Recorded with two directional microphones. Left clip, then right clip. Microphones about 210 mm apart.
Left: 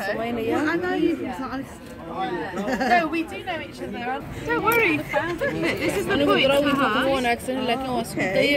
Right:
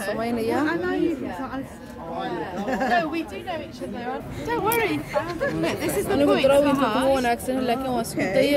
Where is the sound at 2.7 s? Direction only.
55° left (ahead or behind).